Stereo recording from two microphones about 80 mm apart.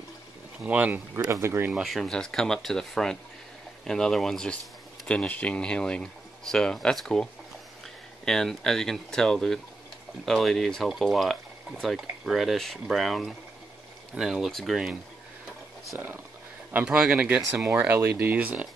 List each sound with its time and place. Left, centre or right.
0.7 s speech: centre
1.4 s speech: right
1.7 s speech: centre
8.3 s speech: centre
16.7 s a man's voice: centre
17.6 s a man's voice: right